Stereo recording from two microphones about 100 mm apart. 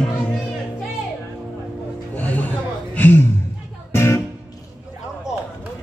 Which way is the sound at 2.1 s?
15° left (ahead or behind).